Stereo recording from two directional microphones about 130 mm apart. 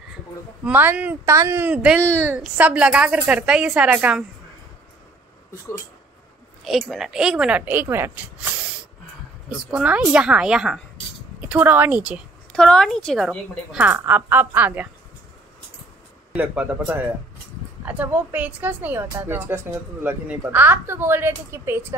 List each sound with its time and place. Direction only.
0.7 s speech: 15° right (ahead or behind)
6.6 s speech: centre (ahead or behind)
9.7 s speech: 10° right (ahead or behind)
12.5 s a woman's voice: 5° left (ahead or behind)
13.8 s speech: 15° right (ahead or behind)
16.3 s speech: 15° right (ahead or behind)